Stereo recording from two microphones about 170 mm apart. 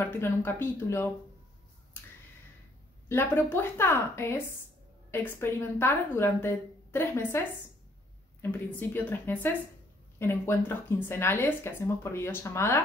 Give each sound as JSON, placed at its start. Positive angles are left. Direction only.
{"t": 0.0, "sound": "speech", "side_deg": 15}
{"t": 3.1, "sound": "speech", "side_deg": 15}